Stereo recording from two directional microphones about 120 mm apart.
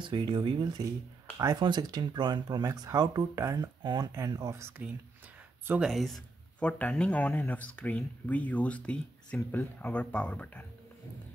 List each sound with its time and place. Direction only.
0.0 s speech: 40° right (ahead or behind); by 3.7 s 25° right (ahead or behind)
3.8 s speech: 35° right (ahead or behind)
4.6 s speech: 20° right (ahead or behind)
5.8 s speech: centre (ahead or behind)